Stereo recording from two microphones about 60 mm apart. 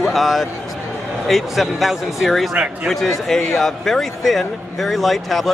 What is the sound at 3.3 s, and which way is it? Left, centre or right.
Speech, centre.